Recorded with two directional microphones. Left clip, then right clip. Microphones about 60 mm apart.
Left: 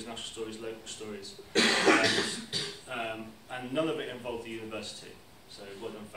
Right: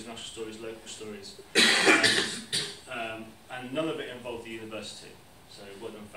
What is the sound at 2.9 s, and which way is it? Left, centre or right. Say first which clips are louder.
A man's voice: even; centre.